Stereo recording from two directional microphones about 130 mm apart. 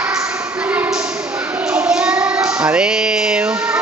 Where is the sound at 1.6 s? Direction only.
10° right (ahead or behind).